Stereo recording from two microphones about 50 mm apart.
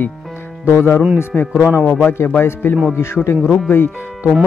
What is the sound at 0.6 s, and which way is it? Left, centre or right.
Speech, left.